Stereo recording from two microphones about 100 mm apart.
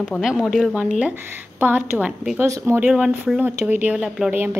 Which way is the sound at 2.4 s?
30° right (ahead or behind).